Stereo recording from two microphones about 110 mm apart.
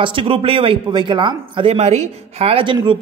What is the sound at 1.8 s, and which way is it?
Speech, 85° right.